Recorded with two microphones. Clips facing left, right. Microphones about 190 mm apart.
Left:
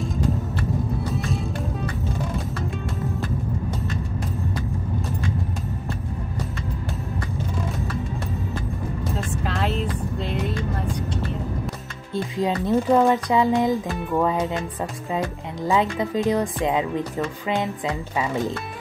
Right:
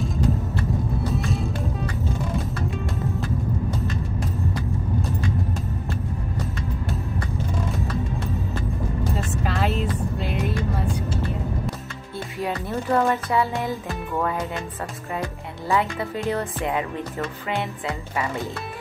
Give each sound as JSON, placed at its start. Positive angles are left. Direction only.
{"t": 1.1, "sound": "music", "side_deg": 0}
{"t": 9.1, "sound": "music", "side_deg": 0}
{"t": 12.4, "sound": "speech", "side_deg": 20}
{"t": 14.1, "sound": "music", "side_deg": 20}
{"t": 15.1, "sound": "speech", "side_deg": 20}